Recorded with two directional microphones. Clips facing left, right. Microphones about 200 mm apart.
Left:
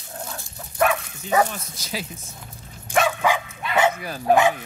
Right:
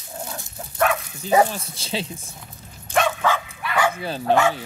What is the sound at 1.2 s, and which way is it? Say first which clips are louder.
Speech: right 3 dB; 30° right (ahead or behind).